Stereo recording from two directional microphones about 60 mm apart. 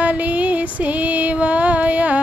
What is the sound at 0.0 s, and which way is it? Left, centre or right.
Female singing, right.